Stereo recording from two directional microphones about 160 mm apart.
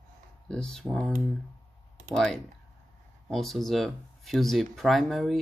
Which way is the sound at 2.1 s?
5° left (ahead or behind).